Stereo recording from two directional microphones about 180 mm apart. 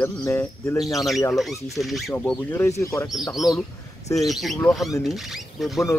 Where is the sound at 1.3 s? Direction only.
Centre (ahead or behind).